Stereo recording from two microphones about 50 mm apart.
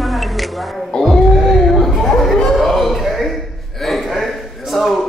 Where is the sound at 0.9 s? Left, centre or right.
Centre.